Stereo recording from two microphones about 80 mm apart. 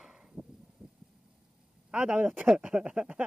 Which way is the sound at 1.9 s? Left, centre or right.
Centre.